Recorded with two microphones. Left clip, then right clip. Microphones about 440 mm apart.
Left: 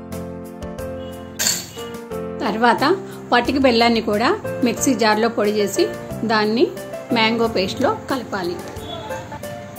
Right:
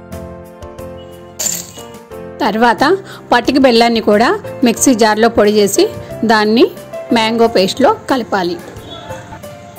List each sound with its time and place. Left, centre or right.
2.3 s a woman's voice: centre